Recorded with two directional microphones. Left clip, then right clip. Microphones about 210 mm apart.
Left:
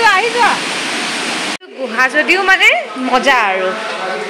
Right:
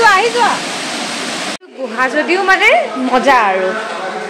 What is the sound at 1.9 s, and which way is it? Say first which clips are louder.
Speech: left 2 dB; centre (ahead or behind).